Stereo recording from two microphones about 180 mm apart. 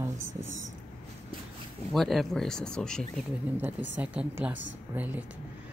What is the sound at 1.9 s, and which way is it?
Speech, centre (ahead or behind).